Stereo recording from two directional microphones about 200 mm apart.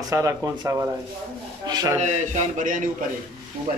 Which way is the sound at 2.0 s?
35° right (ahead or behind).